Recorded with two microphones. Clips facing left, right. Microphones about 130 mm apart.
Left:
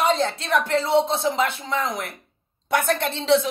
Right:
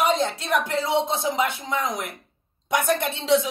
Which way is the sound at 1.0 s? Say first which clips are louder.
Left 2 dB; 65° left (ahead or behind).